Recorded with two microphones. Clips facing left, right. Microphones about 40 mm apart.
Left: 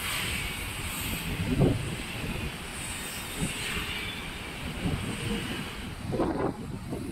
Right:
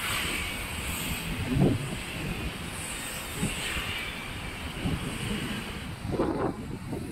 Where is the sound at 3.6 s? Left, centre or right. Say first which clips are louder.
Right 1 dB; centre.